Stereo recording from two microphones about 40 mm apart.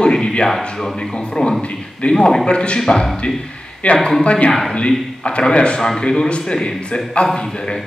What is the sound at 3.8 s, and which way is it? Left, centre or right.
A man's voice, left.